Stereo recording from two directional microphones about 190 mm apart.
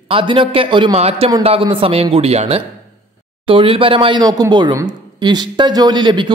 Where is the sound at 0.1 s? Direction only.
25° right (ahead or behind).